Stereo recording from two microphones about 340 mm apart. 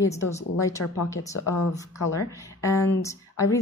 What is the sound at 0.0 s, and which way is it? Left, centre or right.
Speech, centre.